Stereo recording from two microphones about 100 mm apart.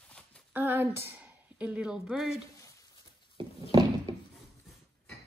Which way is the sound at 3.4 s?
65° right (ahead or behind).